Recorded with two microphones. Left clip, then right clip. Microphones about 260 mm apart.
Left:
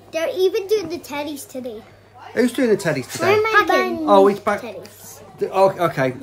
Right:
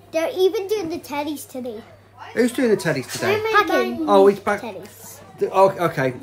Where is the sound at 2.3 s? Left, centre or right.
Centre.